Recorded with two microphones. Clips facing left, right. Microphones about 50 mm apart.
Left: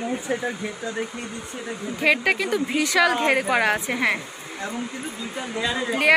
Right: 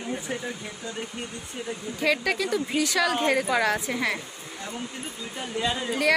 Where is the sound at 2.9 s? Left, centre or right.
Left.